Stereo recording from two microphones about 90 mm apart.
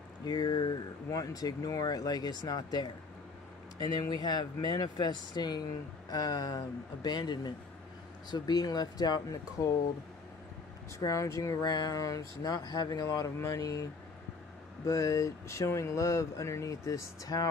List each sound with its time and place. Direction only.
0.2 s a sound: 50° left (ahead or behind)
1.1 s speech: 40° left (ahead or behind)
11.0 s speech: 35° left (ahead or behind)
11.7 s speech: 55° left (ahead or behind)
12.0 s speech: 40° left (ahead or behind)
13.4 s speech: 25° left (ahead or behind)
14.9 s speech: 40° left (ahead or behind)